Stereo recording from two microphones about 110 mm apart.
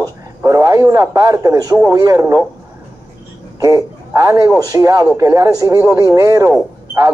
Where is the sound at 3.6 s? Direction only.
30° right (ahead or behind).